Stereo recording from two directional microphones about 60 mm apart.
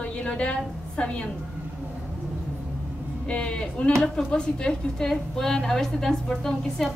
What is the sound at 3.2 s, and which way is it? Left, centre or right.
A woman's voice, centre.